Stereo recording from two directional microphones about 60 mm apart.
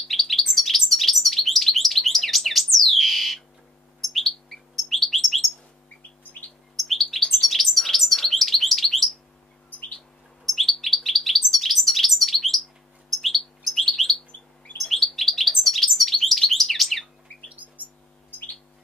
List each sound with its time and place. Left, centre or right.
0.1 s bird: centre
6.8 s bird: centre
10.4 s bird: centre